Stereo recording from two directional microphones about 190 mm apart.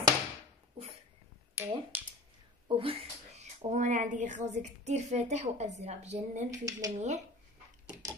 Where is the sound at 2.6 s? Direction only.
30° right (ahead or behind).